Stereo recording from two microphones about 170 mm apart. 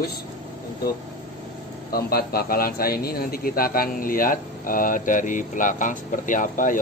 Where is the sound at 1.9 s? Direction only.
65° left (ahead or behind).